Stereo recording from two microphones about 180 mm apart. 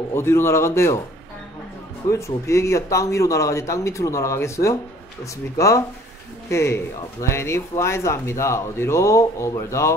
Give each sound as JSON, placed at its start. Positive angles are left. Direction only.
{"t": 0.1, "sound": "speech", "side_deg": 15}
{"t": 2.0, "sound": "speech", "side_deg": 15}